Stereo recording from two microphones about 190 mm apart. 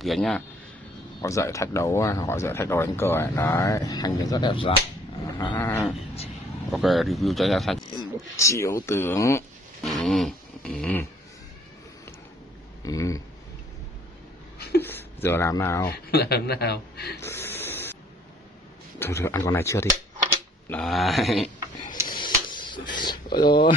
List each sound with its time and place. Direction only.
0.0 s speech: centre (ahead or behind)
1.2 s speech: 15° left (ahead or behind)
5.6 s speech: 10° left (ahead or behind)
7.9 s speech: 15° left (ahead or behind)
9.8 s a sound: centre (ahead or behind)
12.8 s speech: 15° left (ahead or behind)
14.8 s speech: 10° left (ahead or behind)
15.9 s a man's voice: 55° left (ahead or behind)
17.2 s a sound: 15° left (ahead or behind)
18.9 s speech: 15° left (ahead or behind)
22.1 s a sound: 25° left (ahead or behind)